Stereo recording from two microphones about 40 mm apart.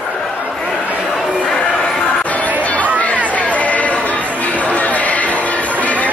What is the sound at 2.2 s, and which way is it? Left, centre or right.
Chatter, left.